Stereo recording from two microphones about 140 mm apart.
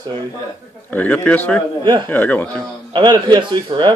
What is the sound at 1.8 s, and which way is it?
Speech, 35° right (ahead or behind).